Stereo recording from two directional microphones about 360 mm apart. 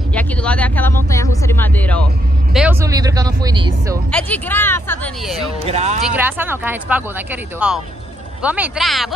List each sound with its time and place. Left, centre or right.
0.1 s speech: centre
4.1 s a woman's voice: centre
5.6 s speech: centre
6.0 s a woman's voice: centre